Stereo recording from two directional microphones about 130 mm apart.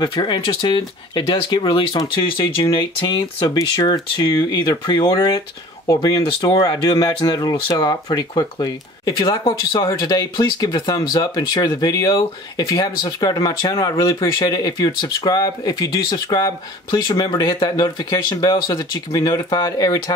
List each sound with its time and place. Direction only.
0.0 s speech: 40° left (ahead or behind)